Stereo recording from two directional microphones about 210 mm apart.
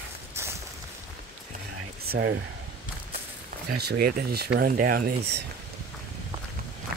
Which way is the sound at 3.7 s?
50° right (ahead or behind).